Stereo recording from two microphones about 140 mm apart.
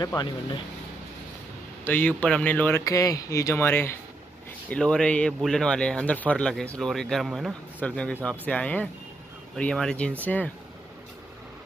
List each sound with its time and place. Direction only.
0.0 s speech: 30° left (ahead or behind)
1.9 s speech: 10° left (ahead or behind)
2.8 s speech: 25° left (ahead or behind)